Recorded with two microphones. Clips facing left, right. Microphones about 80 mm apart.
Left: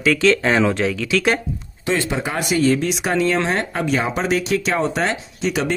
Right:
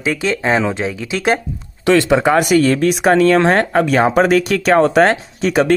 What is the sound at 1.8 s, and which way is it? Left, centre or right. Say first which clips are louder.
Speech: right 9 dB; right.